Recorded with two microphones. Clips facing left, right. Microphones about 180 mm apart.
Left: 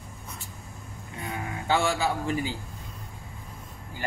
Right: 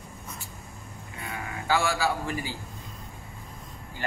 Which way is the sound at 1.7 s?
25° left (ahead or behind).